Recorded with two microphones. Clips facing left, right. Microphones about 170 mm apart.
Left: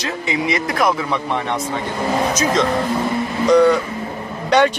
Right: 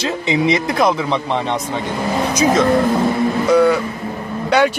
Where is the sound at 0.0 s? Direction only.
25° right (ahead or behind).